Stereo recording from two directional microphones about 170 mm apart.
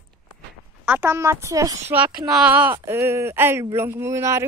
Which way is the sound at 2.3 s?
5° right (ahead or behind).